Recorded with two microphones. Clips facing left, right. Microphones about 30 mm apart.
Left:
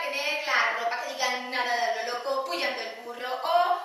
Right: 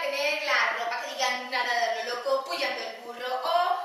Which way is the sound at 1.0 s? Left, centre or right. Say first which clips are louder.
Even; centre.